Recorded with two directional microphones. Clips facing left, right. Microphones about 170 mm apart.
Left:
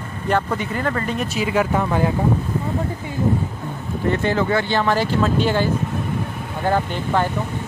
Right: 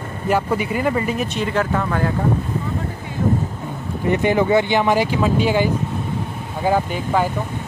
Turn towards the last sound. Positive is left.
turn(degrees=-10)  # may be behind; listen again after turning